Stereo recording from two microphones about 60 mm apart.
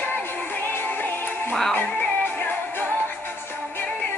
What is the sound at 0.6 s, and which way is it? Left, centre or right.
Music, left.